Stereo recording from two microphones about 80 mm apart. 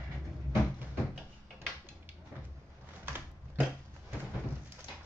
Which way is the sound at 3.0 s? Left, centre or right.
Right.